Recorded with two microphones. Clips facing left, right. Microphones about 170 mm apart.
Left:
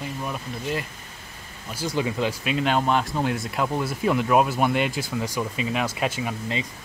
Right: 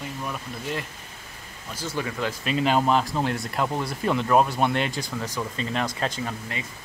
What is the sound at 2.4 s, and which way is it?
Speech, centre (ahead or behind).